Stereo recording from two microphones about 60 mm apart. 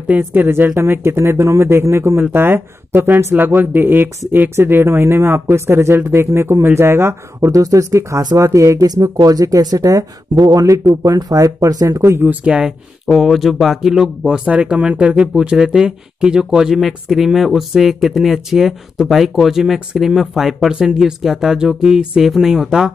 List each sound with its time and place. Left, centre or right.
0.2 s a man's voice: right
2.3 s speech: right
12.0 s a man's voice: right
12.3 s speech: centre
13.0 s speech: centre